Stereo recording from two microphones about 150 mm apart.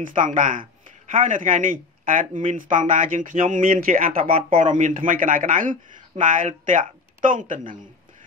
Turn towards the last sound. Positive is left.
turn(degrees=-60)  # may be behind; listen again after turning